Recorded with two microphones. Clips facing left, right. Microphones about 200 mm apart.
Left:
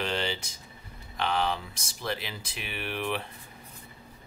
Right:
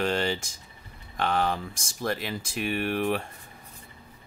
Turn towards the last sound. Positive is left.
turn(degrees=-45)  # may be behind; listen again after turning